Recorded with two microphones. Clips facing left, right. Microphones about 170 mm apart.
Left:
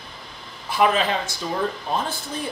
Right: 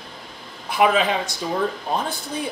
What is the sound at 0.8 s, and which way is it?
Speech, 15° right (ahead or behind).